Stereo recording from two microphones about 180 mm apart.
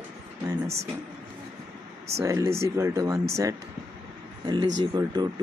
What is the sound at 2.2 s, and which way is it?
Speech, 15° right (ahead or behind).